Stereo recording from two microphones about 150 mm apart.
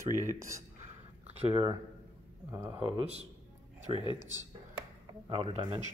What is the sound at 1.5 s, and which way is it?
Speech, 35° right (ahead or behind).